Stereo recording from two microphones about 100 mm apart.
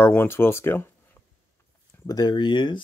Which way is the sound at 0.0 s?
20° left (ahead or behind).